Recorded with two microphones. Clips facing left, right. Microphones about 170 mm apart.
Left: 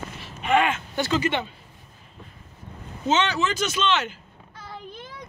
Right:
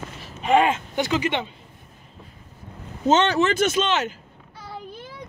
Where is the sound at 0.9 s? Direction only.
15° right (ahead or behind).